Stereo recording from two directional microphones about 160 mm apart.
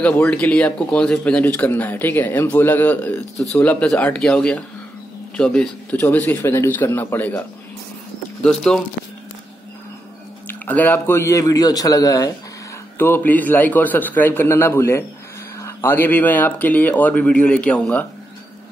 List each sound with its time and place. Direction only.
0.0 s speech: 5° left (ahead or behind)
10.5 s a man's voice: 10° left (ahead or behind)